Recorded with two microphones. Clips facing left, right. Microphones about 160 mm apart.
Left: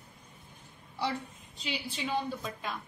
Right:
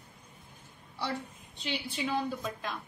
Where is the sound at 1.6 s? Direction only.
Centre (ahead or behind).